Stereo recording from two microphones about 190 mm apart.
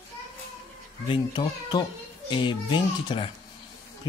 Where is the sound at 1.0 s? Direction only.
25° left (ahead or behind).